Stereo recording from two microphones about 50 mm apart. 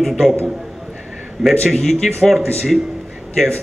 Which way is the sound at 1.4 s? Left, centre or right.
Centre.